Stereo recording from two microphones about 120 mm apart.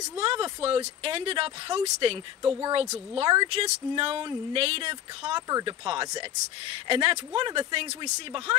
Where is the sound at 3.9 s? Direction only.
50° right (ahead or behind).